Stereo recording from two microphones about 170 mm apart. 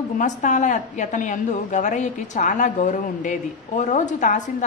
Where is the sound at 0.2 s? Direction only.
45° left (ahead or behind).